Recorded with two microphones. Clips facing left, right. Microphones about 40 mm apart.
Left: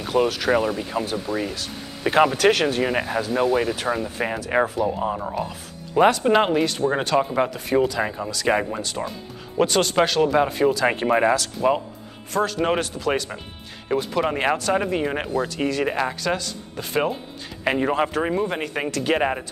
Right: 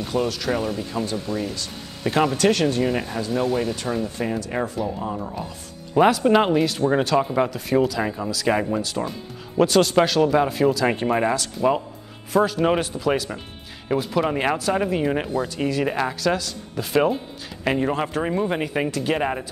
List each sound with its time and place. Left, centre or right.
0.0 s speech: centre
5.9 s speech: centre
15.3 s speech: centre
15.6 s speech: centre
18.3 s speech: centre
19.1 s speech: centre